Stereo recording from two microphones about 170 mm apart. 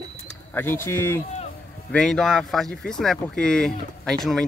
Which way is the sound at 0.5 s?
15° left (ahead or behind).